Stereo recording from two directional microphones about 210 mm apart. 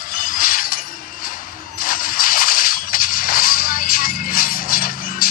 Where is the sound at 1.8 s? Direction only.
40° left (ahead or behind).